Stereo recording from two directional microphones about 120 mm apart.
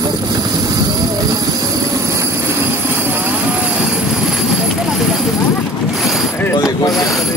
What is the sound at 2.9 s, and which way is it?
Vehicle, 20° right (ahead or behind).